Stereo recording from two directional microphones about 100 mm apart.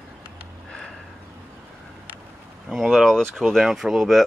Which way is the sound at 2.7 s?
Centre (ahead or behind).